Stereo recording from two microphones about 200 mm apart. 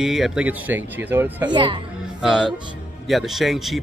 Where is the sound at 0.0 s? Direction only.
Centre (ahead or behind).